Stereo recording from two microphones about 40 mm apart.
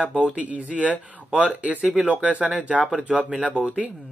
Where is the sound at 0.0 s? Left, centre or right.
Right.